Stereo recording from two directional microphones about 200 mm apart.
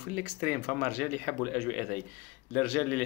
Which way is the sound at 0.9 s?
45° left (ahead or behind).